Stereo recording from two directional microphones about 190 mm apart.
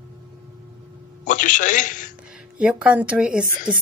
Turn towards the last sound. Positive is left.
turn(degrees=-5)  # may be behind; listen again after turning